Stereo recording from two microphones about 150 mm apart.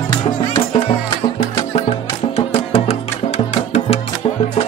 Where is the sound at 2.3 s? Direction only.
45° left (ahead or behind).